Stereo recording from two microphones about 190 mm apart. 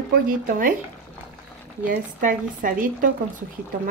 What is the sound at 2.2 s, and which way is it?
Speech, 45° right (ahead or behind).